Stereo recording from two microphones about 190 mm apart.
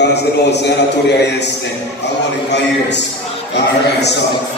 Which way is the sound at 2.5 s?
65° left (ahead or behind).